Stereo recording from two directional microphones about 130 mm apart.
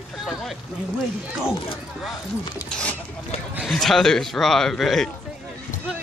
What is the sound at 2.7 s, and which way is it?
Speech, 10° left (ahead or behind).